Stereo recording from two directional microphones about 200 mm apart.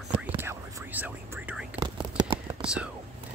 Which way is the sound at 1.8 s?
20° right (ahead or behind).